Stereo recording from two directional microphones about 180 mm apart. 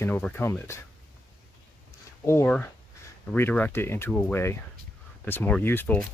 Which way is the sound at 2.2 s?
15° left (ahead or behind).